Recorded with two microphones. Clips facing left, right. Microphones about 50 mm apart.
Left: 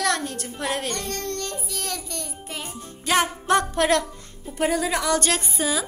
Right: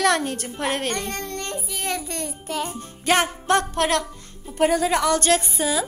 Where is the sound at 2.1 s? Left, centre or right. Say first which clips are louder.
Right 4 dB; right.